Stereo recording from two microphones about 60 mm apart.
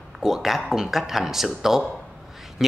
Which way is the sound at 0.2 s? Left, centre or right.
Centre.